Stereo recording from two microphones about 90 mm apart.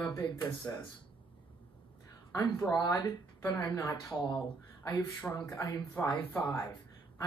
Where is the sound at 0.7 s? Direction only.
30° left (ahead or behind).